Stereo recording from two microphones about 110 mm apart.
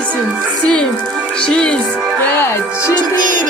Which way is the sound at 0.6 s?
10° left (ahead or behind).